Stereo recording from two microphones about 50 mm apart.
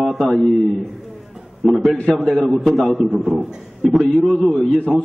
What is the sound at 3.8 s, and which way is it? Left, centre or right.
A man's voice, centre.